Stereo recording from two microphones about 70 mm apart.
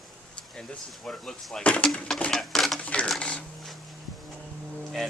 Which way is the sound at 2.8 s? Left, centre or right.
Left.